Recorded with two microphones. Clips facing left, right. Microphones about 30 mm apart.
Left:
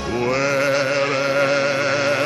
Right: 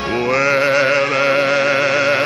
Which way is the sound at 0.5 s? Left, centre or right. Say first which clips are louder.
Right 5 dB; right.